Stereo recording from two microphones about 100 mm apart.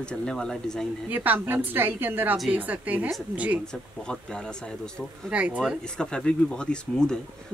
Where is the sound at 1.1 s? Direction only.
20° right (ahead or behind).